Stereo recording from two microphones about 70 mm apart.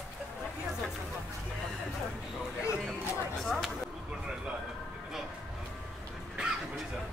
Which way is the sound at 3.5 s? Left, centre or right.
Centre.